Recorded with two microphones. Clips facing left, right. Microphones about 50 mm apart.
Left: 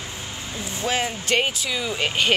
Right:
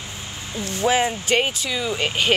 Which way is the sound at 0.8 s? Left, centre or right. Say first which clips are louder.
Right 5 dB; centre.